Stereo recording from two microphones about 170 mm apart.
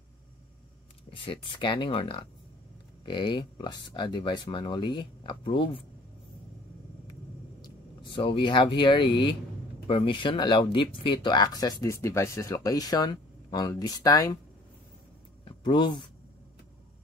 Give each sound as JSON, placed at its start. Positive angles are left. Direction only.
{"t": 1.1, "sound": "speech", "side_deg": 30}
{"t": 8.0, "sound": "speech", "side_deg": 30}
{"t": 15.4, "sound": "a sound", "side_deg": 30}